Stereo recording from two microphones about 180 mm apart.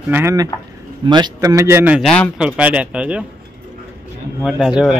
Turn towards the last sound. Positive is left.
turn(degrees=-5)  # may be behind; listen again after turning